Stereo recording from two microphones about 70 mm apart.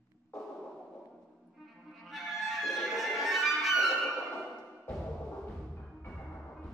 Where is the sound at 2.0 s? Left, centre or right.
Centre.